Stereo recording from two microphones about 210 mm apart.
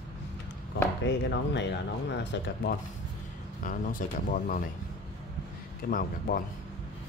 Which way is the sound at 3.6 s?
40° left (ahead or behind).